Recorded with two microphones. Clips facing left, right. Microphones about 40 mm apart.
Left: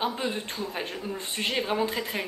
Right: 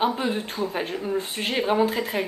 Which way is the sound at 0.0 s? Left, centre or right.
Centre.